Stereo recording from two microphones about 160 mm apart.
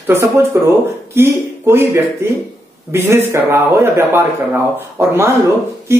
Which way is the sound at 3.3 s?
15° right (ahead or behind).